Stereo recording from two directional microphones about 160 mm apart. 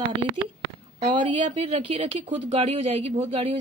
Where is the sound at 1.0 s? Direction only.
30° right (ahead or behind).